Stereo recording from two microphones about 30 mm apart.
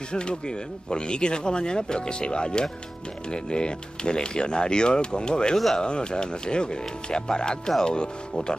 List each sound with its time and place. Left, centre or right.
0.1 s speech: left